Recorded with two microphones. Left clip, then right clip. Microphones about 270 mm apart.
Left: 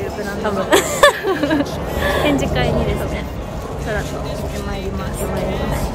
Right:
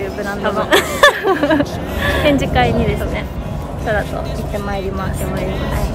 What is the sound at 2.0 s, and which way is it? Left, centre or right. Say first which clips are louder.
Speech: right 1 dB; centre.